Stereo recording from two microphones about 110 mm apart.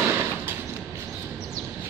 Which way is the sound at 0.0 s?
20° right (ahead or behind).